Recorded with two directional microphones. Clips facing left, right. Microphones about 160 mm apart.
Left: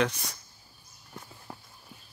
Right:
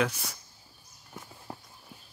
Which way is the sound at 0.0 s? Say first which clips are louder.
Left 1 dB; 5° right (ahead or behind).